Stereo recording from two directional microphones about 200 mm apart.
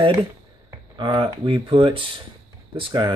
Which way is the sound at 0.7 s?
25° right (ahead or behind).